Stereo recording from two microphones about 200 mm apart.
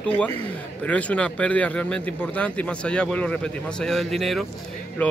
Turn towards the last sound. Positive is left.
turn(degrees=5)  # may be behind; listen again after turning